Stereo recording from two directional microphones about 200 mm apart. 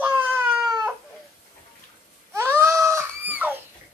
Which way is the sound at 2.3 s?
15° right (ahead or behind).